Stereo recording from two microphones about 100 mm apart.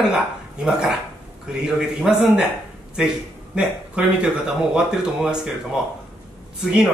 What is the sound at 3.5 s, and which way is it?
A man's voice, 10° right (ahead or behind).